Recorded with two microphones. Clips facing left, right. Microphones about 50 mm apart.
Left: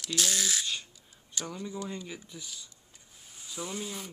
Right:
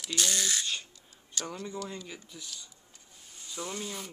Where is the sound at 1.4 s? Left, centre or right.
Centre.